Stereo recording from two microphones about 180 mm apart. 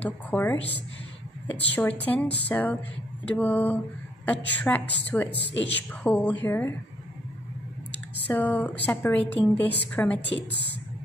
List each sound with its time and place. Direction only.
0.0 s a woman's voice: 10° left (ahead or behind)
5.3 s speech: 80° left
6.0 s a woman's voice: 10° left (ahead or behind)
8.3 s a woman's voice: 10° left (ahead or behind)
10.2 s a woman's voice: 75° left (ahead or behind)